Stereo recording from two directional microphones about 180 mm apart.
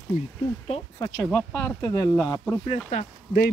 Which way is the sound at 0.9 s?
20° left (ahead or behind).